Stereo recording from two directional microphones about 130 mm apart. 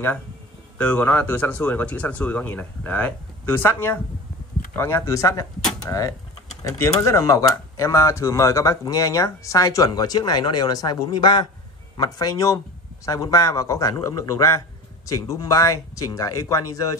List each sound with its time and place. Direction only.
0.7 s speech: 10° left (ahead or behind); by 17.0 s 25° left (ahead or behind)